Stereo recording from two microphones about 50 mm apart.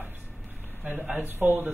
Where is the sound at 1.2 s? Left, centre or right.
Right.